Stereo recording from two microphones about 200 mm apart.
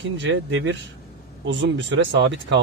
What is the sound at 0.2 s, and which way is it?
Speech, 70° right (ahead or behind).